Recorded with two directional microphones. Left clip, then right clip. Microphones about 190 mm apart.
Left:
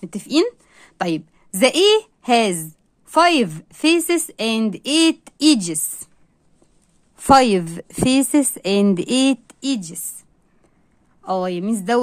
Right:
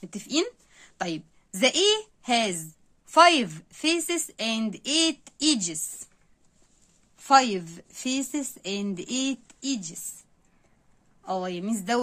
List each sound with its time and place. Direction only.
0.0 s a woman's voice: 30° left (ahead or behind)
7.2 s a woman's voice: 45° left (ahead or behind)
11.2 s speech: 30° left (ahead or behind)